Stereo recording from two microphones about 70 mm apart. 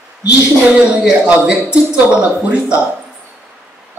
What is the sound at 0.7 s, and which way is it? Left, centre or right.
Speech, centre.